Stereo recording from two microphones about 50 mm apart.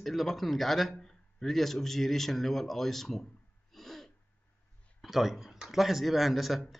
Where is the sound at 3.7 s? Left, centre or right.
Centre.